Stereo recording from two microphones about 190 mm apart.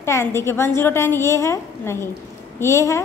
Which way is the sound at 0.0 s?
15° left (ahead or behind).